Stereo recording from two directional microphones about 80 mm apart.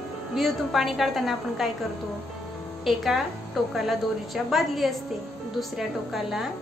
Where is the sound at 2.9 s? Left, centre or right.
Centre.